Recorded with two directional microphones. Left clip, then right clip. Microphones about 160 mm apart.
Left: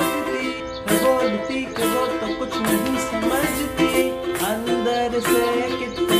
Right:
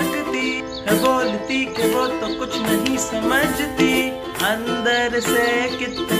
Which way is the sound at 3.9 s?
Centre (ahead or behind).